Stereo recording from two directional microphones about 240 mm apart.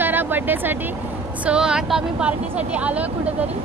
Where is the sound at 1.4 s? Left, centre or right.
Centre.